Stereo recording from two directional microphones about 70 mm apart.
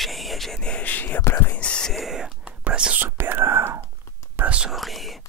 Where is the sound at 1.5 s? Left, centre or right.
Centre.